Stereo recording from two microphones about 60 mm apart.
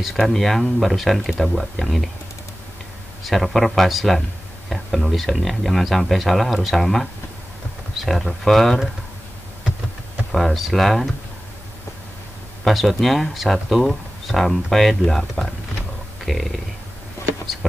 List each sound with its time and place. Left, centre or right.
0.0 s speech: centre
3.3 s speech: centre
10.3 s speech: centre
12.6 s speech: centre